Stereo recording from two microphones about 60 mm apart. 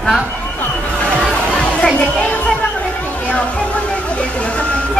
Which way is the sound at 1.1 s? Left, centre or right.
Centre.